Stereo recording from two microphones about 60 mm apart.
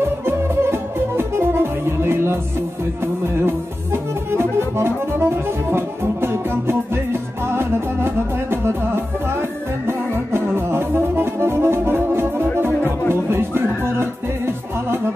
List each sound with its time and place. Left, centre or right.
0.2 s music: right
3.4 s music: right